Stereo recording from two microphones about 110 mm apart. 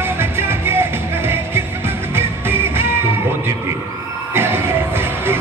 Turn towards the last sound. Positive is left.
turn(degrees=-20)  # may be behind; listen again after turning